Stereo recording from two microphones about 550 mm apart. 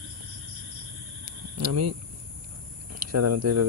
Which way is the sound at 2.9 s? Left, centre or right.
Right.